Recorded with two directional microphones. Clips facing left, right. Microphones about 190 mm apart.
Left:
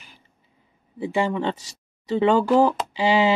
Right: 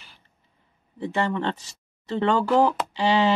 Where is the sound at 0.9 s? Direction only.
10° left (ahead or behind).